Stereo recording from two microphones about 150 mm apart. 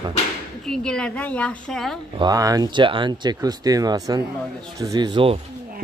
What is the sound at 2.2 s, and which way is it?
A woman's voice, 25° right (ahead or behind).